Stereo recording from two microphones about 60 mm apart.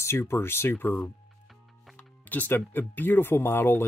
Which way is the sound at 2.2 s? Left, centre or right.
Left.